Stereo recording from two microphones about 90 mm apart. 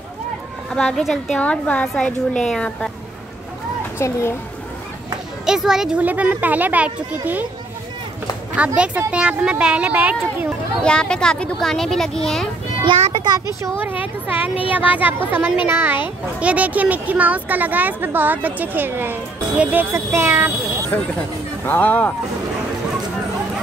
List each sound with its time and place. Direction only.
0.7 s a woman's voice: 10° left (ahead or behind)
4.0 s speech: 30° left (ahead or behind)
5.4 s speech: 5° right (ahead or behind)
8.5 s speech: 15° right (ahead or behind)
10.8 s a woman's voice: 10° left (ahead or behind)
12.8 s a child's voice: 65° right (ahead or behind)
14.0 s a woman's voice: 15° right (ahead or behind)
19.9 s a woman's voice: 30° right (ahead or behind)
20.9 s speech: 20° left (ahead or behind)